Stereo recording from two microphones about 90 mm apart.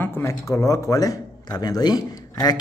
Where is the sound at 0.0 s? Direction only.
30° left (ahead or behind).